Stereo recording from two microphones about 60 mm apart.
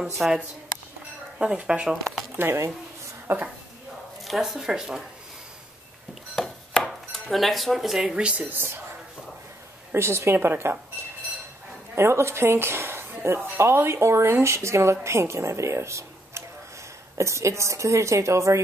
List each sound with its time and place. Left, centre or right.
0.0 s speech: centre
1.4 s speech: centre
2.3 s speech: right
4.2 s speech: centre
6.3 s dishes: centre
9.9 s speech: right
11.9 s a woman's voice: right